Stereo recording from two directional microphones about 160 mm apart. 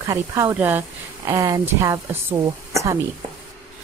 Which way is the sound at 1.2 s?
20° right (ahead or behind).